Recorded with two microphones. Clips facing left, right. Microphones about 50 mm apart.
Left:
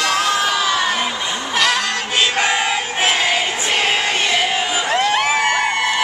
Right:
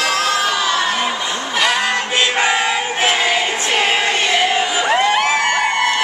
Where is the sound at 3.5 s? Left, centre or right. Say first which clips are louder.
Right 2 dB; centre.